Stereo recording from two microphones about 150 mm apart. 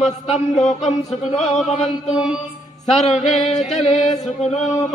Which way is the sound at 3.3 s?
50° left (ahead or behind).